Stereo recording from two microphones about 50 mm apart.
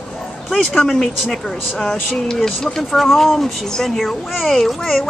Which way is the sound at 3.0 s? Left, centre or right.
Centre.